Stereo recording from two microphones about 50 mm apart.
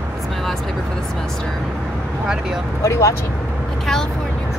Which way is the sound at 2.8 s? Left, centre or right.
Left.